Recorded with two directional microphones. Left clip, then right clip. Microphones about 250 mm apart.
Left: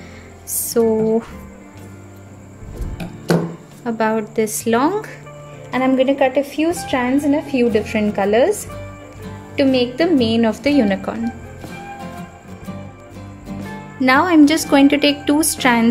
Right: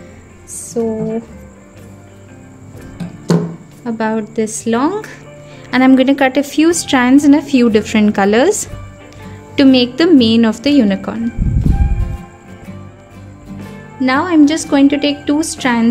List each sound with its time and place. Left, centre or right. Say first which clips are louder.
3.8 s a woman's voice: even; centre
5.7 s a woman's voice: right 5 dB; centre
9.6 s music: right 5 dB; centre
13.5 s speech: left 1 dB; centre